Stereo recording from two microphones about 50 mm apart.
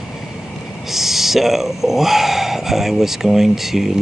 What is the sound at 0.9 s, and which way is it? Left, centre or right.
Speech, centre.